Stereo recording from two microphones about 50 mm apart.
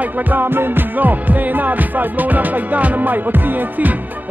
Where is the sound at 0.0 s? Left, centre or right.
Right.